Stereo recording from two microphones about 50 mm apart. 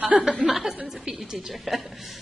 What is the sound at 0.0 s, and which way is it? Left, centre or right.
Speech, right.